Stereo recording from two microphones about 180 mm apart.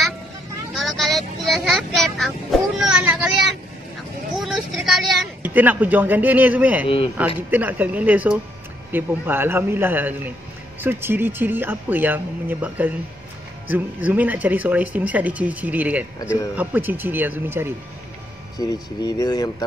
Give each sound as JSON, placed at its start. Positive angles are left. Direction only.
{"t": 0.7, "sound": "a sound", "side_deg": 0}
{"t": 2.8, "sound": "speech", "side_deg": -5}
{"t": 4.4, "sound": "speech", "side_deg": 0}
{"t": 18.6, "sound": "speech", "side_deg": 20}